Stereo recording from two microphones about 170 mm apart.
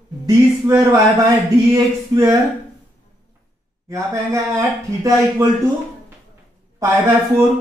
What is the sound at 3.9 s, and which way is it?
Speech, 20° right (ahead or behind).